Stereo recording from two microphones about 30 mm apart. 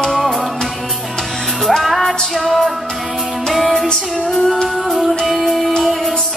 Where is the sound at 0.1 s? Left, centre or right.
Centre.